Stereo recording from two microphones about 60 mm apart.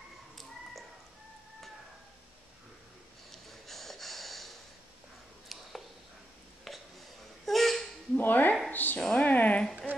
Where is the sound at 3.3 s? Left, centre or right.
Centre.